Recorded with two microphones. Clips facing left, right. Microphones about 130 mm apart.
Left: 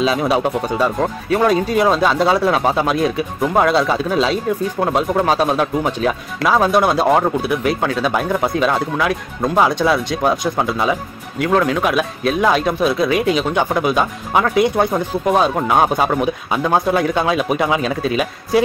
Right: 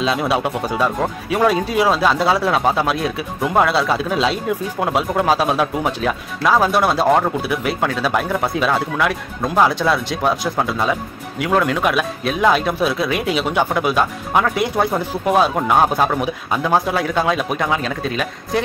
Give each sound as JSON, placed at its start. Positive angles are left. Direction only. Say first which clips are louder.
{"t": 0.0, "sound": "speech", "louder": "left 2 dB", "side_deg": 0}